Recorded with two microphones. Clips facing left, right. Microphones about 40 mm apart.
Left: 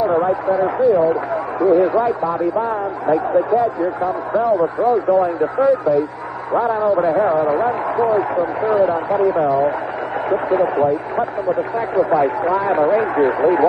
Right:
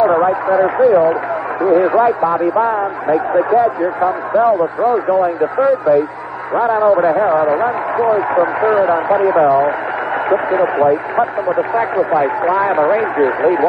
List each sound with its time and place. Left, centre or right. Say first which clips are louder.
0.1 s a man's voice: right 4 dB; right